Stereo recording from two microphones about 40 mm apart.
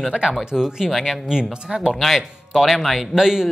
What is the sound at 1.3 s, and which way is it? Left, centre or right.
Speech, centre.